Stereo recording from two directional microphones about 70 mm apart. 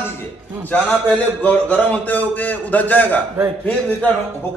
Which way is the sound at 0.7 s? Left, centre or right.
Left.